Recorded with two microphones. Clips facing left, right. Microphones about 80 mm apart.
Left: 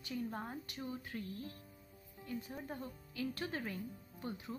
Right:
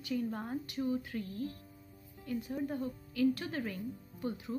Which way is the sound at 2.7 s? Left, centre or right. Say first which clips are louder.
Right 8 dB; left.